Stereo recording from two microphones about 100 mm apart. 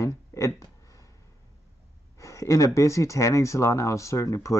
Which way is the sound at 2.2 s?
30° left (ahead or behind).